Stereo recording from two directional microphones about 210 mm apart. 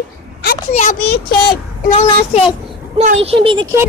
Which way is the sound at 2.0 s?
30° left (ahead or behind).